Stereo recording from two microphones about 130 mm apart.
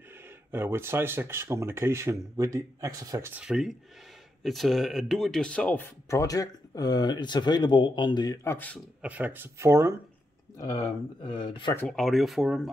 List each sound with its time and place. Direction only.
0.5 s speech: 15° right (ahead or behind)
3.3 s speech: 5° right (ahead or behind)
6.0 s speech: 25° left (ahead or behind)
8.5 s speech: 15° left (ahead or behind)
9.0 s speech: 15° right (ahead or behind)
11.2 s speech: 35° left (ahead or behind)
11.9 s speech: centre (ahead or behind)